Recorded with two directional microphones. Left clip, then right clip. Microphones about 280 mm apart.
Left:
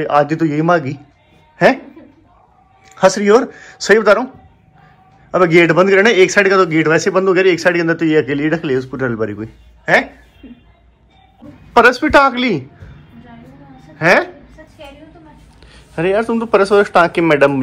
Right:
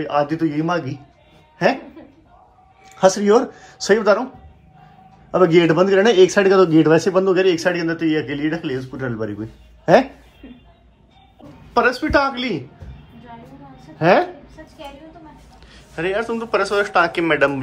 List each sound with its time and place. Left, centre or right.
0.0 s a man's voice: centre
2.8 s a man's voice: centre
5.3 s a man's voice: centre
9.9 s speech: centre
10.4 s speech: centre
11.7 s speech: centre
13.9 s a woman's voice: centre
15.6 s a man's voice: centre